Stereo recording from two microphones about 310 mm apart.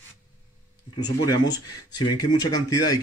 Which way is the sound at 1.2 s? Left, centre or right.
Centre.